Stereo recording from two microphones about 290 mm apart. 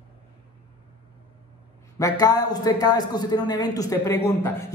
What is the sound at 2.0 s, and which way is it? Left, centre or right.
A man's voice, centre.